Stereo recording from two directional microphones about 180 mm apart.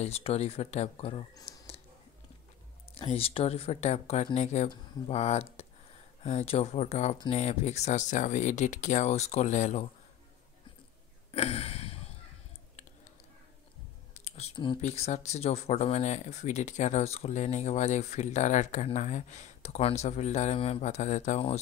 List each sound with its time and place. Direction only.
0.0 s speech: 35° left (ahead or behind)
1.3 s computer keyboard: 30° left (ahead or behind)
2.9 s speech: 35° left (ahead or behind)
11.3 s a sound: 35° left (ahead or behind)
14.1 s clicking: 35° left (ahead or behind)
14.8 s speech: 40° left (ahead or behind)